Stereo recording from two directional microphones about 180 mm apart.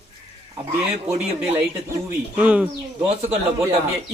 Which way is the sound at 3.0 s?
35° right (ahead or behind).